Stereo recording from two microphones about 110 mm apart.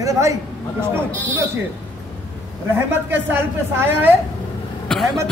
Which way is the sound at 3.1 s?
20° right (ahead or behind).